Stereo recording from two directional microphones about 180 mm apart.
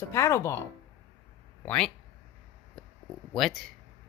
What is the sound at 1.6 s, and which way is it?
Speech, 5° left (ahead or behind).